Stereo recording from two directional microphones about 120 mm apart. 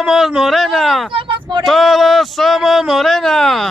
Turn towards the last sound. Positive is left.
turn(degrees=0)  # may be behind; listen again after turning